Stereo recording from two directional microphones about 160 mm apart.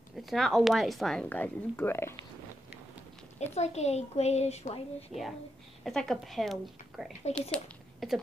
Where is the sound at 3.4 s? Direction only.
45° left (ahead or behind).